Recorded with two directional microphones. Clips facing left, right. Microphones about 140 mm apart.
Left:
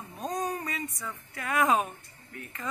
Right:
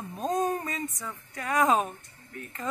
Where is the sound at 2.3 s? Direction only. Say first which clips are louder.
Right 3 dB; 35° right (ahead or behind).